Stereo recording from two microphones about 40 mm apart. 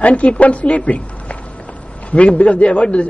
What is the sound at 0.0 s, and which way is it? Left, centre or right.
Speech, left.